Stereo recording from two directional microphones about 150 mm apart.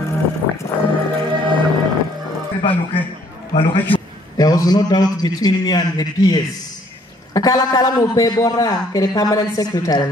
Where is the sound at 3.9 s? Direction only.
25° left (ahead or behind).